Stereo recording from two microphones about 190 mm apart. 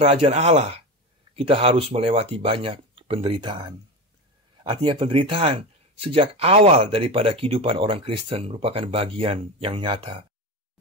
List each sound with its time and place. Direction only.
0.0 s speech: 30° right (ahead or behind)